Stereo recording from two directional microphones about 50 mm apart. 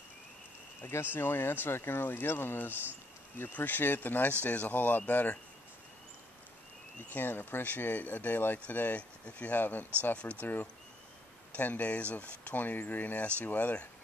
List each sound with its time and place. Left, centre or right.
1.1 s speech: left
7.1 s speech: left